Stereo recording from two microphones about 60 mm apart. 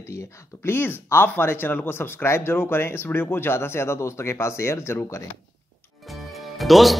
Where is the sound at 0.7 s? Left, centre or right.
Left.